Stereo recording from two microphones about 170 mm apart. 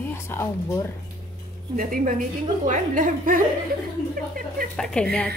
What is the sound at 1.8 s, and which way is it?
A woman's voice, 50° right (ahead or behind).